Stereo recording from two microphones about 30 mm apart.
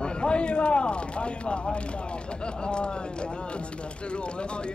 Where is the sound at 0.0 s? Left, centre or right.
Left.